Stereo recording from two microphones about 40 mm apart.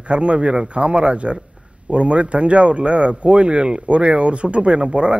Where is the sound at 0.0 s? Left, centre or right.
Right.